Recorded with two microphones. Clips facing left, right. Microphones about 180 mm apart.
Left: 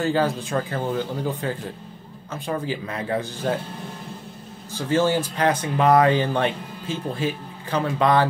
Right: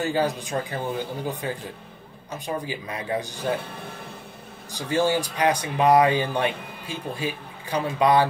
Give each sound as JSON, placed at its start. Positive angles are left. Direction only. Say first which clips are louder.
{"t": 0.0, "sound": "speech", "louder": "left 2 dB", "side_deg": -15}
{"t": 4.7, "sound": "speech", "louder": "left 2 dB", "side_deg": -15}